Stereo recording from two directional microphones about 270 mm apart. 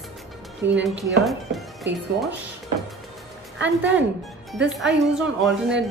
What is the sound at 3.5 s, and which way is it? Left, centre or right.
Speech, right.